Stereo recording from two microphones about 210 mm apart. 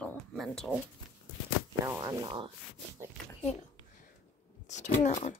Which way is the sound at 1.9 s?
15° right (ahead or behind).